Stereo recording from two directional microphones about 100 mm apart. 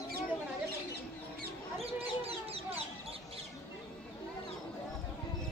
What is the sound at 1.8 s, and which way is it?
Chicken, 80° right.